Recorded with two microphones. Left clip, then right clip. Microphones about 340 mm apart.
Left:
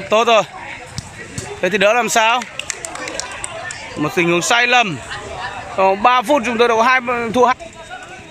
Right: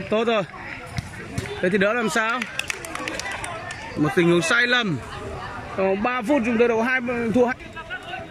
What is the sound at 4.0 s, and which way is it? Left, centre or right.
Speech, centre.